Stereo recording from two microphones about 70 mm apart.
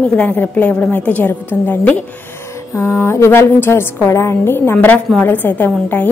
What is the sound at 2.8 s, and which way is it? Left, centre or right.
A woman's voice, left.